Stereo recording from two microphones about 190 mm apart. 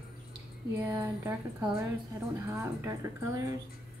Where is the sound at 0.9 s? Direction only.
20° right (ahead or behind).